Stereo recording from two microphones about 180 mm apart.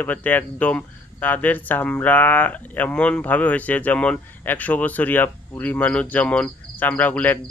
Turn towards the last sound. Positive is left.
turn(degrees=10)  # may be behind; listen again after turning